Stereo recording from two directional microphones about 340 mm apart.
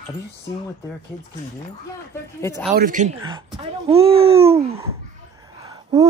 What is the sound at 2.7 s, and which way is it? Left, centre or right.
Speech, right.